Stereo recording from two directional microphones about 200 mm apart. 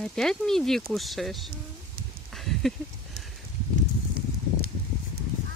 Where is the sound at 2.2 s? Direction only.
Centre (ahead or behind).